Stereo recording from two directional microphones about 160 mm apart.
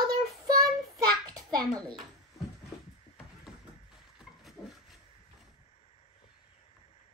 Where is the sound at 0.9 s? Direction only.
20° right (ahead or behind).